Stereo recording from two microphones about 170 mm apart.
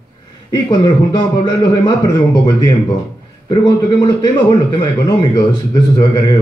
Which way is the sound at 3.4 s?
25° left (ahead or behind).